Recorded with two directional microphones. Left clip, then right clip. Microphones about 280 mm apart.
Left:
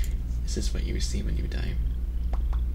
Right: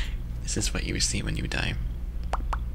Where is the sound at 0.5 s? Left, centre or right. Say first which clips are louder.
Right 6 dB; right.